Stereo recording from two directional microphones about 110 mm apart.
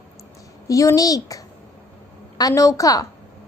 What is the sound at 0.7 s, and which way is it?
A woman's voice, 30° left (ahead or behind).